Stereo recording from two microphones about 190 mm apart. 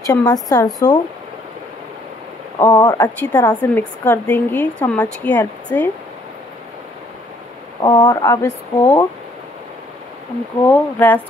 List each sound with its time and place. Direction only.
0.0 s speech: 20° left (ahead or behind)
2.6 s speech: 20° left (ahead or behind)
7.8 s speech: 20° left (ahead or behind)
10.7 s speech: 10° left (ahead or behind)